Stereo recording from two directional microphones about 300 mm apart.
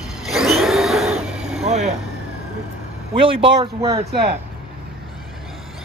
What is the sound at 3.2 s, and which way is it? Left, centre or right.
Speech, centre.